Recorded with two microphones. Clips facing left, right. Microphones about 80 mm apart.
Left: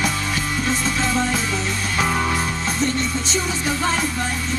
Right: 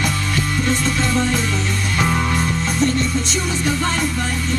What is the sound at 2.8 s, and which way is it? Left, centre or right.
Music, centre.